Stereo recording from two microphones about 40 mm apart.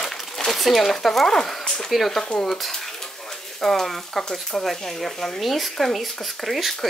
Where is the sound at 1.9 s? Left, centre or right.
Centre.